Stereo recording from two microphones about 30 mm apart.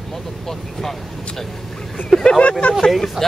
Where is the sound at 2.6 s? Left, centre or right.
Left.